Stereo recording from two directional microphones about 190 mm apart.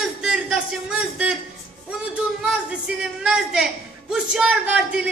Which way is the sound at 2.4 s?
5° right (ahead or behind).